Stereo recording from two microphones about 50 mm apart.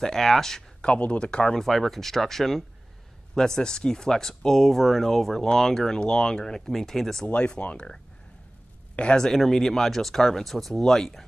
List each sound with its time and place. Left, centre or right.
0.0 s speech: centre
0.8 s speech: left
1.6 s speech: centre
7.3 s speech: left; by 11.2 s centre